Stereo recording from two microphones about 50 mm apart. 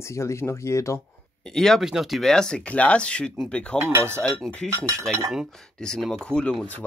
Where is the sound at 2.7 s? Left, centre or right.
Left.